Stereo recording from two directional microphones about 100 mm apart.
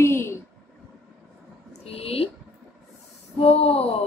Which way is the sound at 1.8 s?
85° left.